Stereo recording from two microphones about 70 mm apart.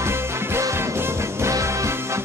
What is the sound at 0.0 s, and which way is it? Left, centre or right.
Music, right.